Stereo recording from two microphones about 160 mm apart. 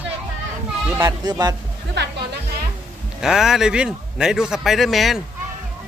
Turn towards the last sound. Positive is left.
turn(degrees=0)  # may be behind; listen again after turning